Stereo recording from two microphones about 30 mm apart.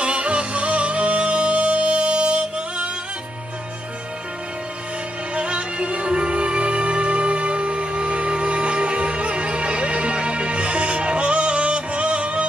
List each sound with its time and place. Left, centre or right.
0.0 s music: right
5.3 s music: right